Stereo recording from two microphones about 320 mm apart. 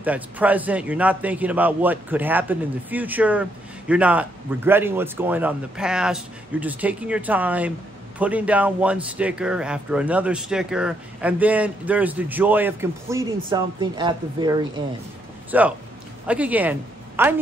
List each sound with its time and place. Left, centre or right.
0.0 s a woman's voice: centre